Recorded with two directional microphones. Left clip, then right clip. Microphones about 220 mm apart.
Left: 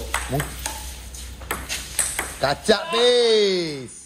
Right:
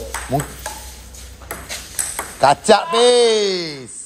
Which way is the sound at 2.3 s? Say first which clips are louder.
Right 8 dB; 15° right (ahead or behind).